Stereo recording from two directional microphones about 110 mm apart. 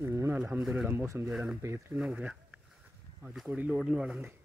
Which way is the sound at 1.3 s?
5° right (ahead or behind).